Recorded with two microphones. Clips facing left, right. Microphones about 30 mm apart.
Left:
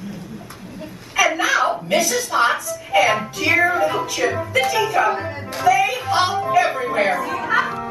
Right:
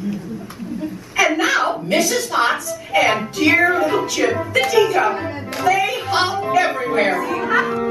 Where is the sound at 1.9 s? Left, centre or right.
Right.